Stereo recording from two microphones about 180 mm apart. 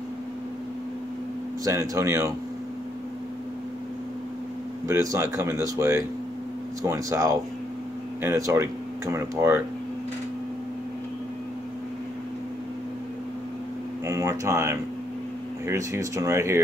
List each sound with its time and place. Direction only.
1.6 s speech: 15° right (ahead or behind)
4.8 s speech: 15° right (ahead or behind)
14.0 s a sound: 15° right (ahead or behind)
15.6 s speech: 15° right (ahead or behind)